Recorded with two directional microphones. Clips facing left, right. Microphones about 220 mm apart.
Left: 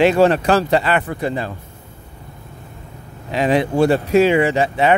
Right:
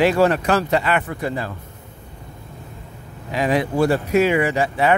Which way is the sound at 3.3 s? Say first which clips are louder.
Left 3 dB; 25° left (ahead or behind).